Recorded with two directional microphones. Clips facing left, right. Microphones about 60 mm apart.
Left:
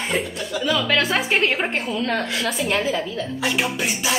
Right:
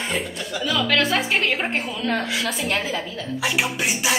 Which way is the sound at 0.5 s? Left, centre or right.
Centre.